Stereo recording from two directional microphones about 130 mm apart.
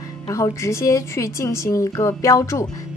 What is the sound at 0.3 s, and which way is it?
A woman's voice, 25° left (ahead or behind).